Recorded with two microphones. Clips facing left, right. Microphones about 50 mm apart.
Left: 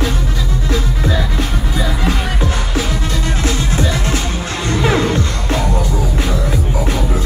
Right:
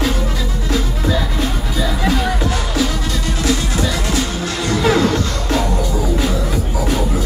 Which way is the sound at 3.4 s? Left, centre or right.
Left.